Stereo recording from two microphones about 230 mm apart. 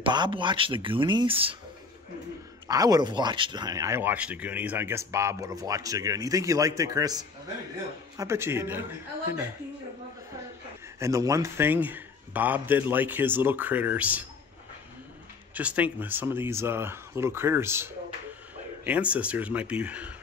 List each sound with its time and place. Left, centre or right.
0.0 s speech: right
2.7 s speech: centre
11.0 s speech: centre
15.5 s speech: centre